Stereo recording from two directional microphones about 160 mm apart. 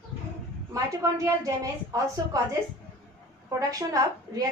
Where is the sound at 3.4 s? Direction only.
20° right (ahead or behind).